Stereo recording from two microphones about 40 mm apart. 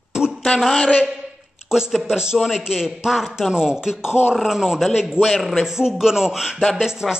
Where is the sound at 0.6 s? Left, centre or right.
Centre.